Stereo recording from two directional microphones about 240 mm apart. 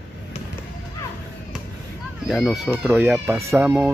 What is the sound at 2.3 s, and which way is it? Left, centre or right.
Speech, centre.